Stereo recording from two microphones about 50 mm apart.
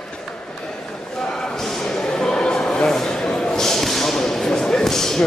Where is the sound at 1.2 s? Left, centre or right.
Centre.